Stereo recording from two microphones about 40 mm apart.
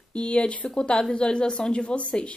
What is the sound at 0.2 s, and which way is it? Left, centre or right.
A woman's voice, left.